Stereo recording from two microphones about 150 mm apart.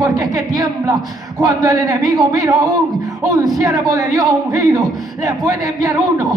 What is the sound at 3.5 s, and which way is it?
Speech, 25° right (ahead or behind).